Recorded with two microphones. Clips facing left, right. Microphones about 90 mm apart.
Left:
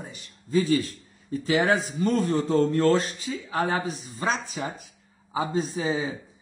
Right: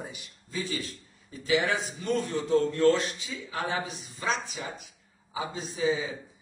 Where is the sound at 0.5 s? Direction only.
50° left (ahead or behind).